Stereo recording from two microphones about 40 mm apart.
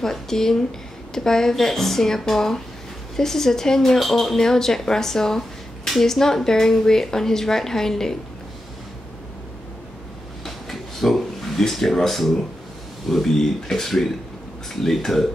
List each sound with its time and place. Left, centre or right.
0.0 s a woman's voice: centre
10.4 s a sound: centre
13.1 s a woman's voice: centre